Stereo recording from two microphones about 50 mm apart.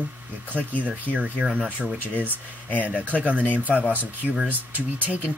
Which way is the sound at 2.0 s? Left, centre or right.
Left.